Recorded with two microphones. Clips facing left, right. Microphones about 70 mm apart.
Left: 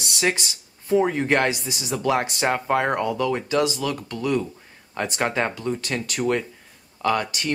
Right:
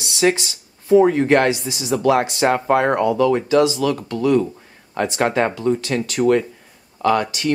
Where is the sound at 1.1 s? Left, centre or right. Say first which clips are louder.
Right 6 dB; right.